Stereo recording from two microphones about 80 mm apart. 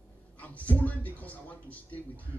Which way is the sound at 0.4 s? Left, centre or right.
Centre.